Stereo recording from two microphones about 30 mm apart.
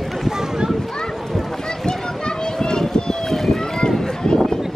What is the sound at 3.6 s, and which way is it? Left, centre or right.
Run, centre.